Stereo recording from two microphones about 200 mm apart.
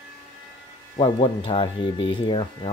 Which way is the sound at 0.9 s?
25° left (ahead or behind).